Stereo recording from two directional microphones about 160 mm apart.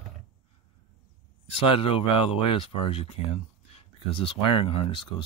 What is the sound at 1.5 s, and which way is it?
Speech, 35° left (ahead or behind).